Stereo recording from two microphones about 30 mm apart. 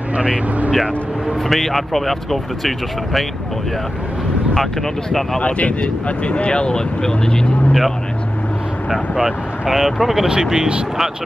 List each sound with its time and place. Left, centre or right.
0.2 s speech: right
1.5 s speech: centre
5.4 s speech: left
9.2 s speech: centre
10.2 s speech: right